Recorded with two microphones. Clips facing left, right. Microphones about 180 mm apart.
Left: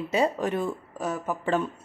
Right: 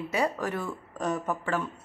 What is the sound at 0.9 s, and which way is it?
Speech, 5° left (ahead or behind).